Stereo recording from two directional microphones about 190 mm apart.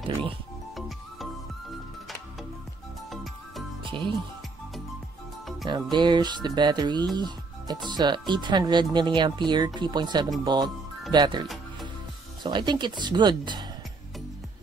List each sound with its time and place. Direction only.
0.7 s music: centre (ahead or behind)
3.8 s music: 25° right (ahead or behind)
5.7 s speech: 25° right (ahead or behind)
12.4 s speech: 25° right (ahead or behind)